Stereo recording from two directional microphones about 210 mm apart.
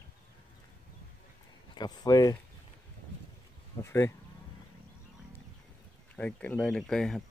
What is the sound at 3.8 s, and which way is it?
Speech, 15° left (ahead or behind).